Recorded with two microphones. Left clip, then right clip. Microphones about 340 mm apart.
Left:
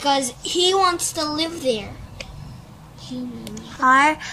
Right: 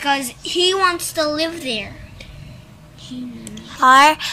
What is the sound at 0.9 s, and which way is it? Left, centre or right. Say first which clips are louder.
Speech: right 4 dB; left.